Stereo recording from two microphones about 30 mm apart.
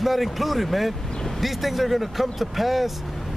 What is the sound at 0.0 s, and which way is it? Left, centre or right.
Speech, centre.